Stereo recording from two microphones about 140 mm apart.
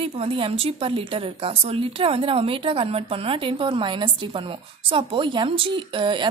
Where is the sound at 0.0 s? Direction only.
40° right (ahead or behind).